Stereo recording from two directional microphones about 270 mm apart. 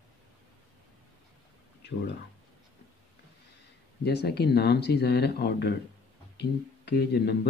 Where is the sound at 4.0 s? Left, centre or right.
Left.